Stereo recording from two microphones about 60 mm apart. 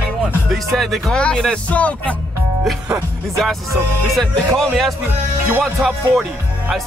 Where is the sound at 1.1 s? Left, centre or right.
Centre.